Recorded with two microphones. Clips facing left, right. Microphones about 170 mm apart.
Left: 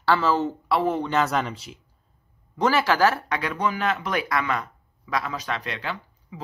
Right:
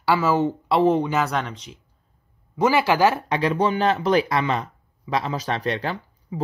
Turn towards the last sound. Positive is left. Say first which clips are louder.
# right 3 dB
turn(degrees=-35)  # may be behind; listen again after turning